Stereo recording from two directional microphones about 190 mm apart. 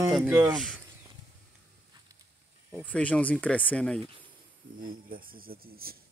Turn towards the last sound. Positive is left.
turn(degrees=-50)  # may be behind; listen again after turning